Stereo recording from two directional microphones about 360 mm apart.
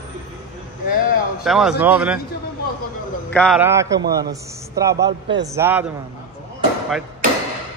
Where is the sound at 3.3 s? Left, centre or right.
Centre.